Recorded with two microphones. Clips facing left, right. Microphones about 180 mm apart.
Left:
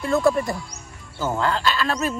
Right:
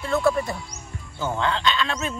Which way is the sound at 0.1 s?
15° left (ahead or behind).